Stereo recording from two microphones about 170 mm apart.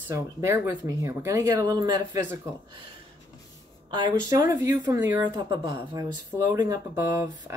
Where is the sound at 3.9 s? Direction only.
25° right (ahead or behind).